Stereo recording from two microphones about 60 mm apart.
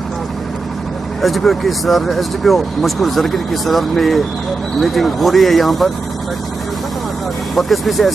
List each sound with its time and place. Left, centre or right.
1.2 s speech: centre
7.5 s speech: centre